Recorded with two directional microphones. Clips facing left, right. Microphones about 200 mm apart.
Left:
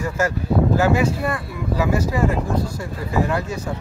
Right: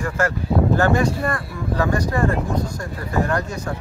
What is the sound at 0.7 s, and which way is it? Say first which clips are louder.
Speech: even; 5° left (ahead or behind).